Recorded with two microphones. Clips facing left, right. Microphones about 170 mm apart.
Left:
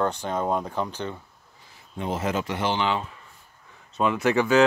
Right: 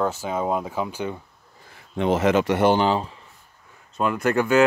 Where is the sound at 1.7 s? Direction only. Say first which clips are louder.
Right 8 dB; 80° right; by 2.7 s 65° right (ahead or behind).